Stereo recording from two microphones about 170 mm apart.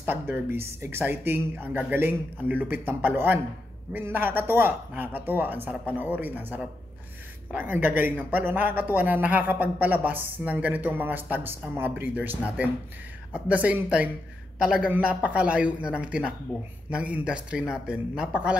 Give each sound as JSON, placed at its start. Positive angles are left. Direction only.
{"t": 0.0, "sound": "speech", "side_deg": -10}